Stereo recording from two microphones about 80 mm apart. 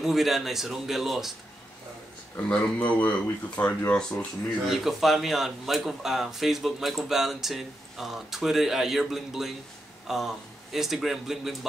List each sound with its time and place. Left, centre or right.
0.0 s speech: centre
2.5 s speech: centre
4.6 s speech: centre